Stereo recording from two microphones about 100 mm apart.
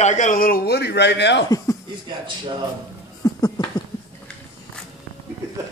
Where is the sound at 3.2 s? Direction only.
35° left (ahead or behind).